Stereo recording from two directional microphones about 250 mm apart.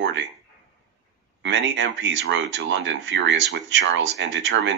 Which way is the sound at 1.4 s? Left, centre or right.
Right.